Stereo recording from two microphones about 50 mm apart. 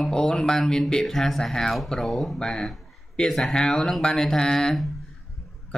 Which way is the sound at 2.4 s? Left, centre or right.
Centre.